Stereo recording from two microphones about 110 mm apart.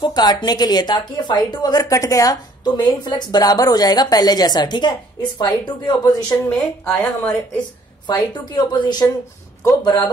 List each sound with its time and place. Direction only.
0.0 s a woman's voice: 40° left (ahead or behind)
6.5 s speech: 10° left (ahead or behind)
8.1 s a woman's voice: 40° left (ahead or behind)